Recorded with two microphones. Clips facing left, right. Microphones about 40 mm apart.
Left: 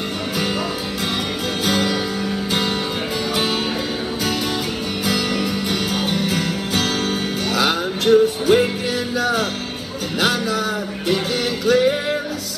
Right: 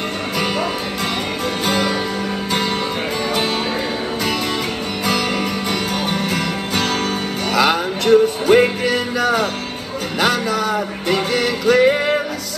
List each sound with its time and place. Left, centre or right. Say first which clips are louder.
1.6 s music: right 1 dB; right
5.0 s music: right 2 dB; right